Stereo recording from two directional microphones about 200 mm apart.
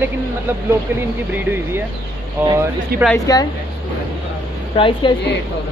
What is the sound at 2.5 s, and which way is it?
Speech, 10° right (ahead or behind).